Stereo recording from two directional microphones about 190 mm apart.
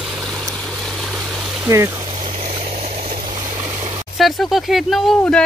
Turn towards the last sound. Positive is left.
turn(degrees=5)  # may be behind; listen again after turning